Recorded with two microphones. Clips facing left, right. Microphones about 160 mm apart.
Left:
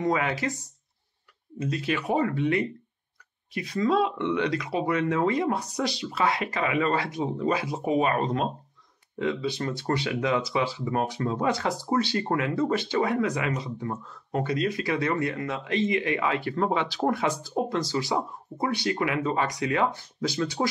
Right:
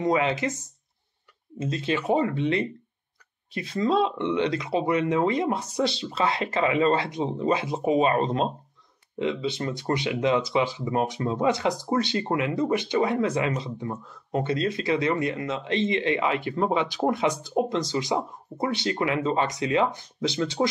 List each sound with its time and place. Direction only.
0.0 s speech: 20° right (ahead or behind)
1.6 s speech: 25° right (ahead or behind)